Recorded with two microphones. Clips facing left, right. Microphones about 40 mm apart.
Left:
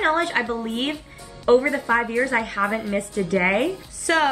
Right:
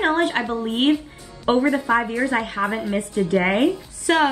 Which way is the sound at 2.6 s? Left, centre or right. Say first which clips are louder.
Even; centre.